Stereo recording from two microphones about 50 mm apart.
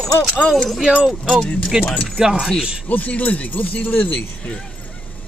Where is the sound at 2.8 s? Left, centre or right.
Left.